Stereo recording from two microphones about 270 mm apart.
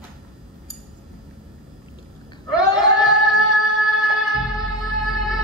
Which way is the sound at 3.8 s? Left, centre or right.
Centre.